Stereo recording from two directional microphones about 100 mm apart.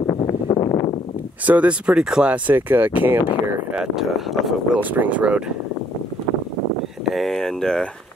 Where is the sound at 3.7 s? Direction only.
5° right (ahead or behind).